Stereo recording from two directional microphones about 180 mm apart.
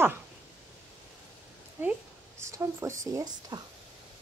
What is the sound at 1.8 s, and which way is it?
A woman's voice, 10° right (ahead or behind).